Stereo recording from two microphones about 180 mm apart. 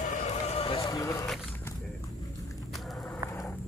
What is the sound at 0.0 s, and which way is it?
Run, 40° left (ahead or behind).